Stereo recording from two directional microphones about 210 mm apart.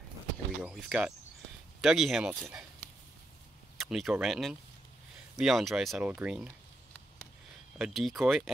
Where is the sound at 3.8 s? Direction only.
Centre (ahead or behind).